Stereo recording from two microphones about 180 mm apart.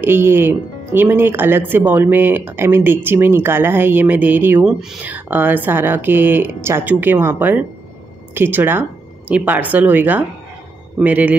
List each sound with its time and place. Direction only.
0.0 s speech: 10° right (ahead or behind)